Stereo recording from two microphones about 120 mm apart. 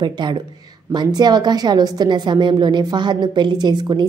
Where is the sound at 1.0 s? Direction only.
35° right (ahead or behind).